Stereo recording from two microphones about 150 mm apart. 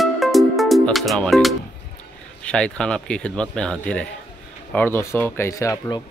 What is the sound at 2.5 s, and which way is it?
Speech, 5° left (ahead or behind).